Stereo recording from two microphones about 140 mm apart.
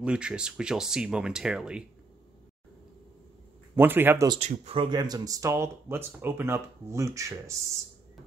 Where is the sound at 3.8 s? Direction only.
15° right (ahead or behind).